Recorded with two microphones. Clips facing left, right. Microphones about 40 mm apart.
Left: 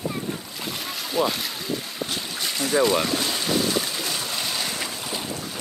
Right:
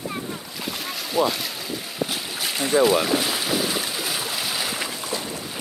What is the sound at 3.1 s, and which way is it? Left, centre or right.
Boat, centre.